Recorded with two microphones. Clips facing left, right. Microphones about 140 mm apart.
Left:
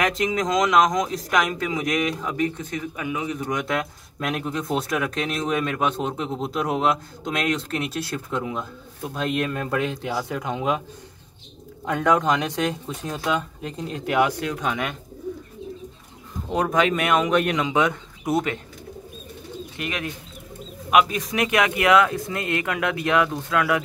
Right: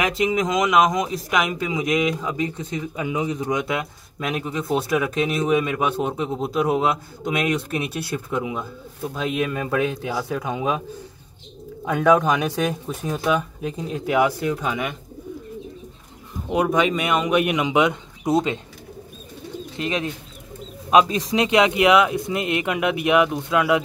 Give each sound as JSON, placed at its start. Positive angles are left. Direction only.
{"t": 0.0, "sound": "speech", "side_deg": -5}
{"t": 3.4, "sound": "speech", "side_deg": -10}
{"t": 11.8, "sound": "speech", "side_deg": -5}
{"t": 16.4, "sound": "speech", "side_deg": -5}
{"t": 19.8, "sound": "speech", "side_deg": -25}